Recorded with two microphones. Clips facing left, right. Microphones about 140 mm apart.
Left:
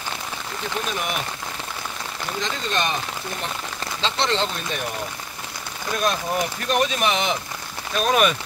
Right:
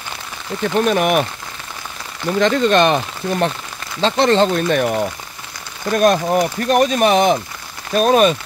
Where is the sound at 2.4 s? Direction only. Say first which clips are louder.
Right 13 dB; 65° right (ahead or behind).